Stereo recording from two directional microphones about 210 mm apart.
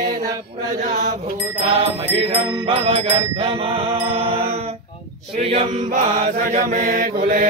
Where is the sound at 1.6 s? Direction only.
30° right (ahead or behind).